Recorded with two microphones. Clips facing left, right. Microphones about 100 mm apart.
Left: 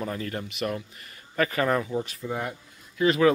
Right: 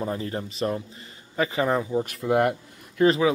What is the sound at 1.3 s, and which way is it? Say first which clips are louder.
Speech: right 1 dB; 20° right (ahead or behind).